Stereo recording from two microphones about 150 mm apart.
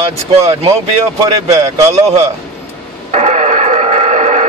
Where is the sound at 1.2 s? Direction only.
20° right (ahead or behind).